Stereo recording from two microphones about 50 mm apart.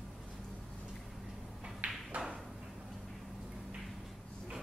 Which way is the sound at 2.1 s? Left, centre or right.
Right.